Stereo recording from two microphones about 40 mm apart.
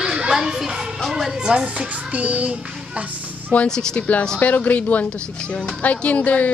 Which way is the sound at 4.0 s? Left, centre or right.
Left.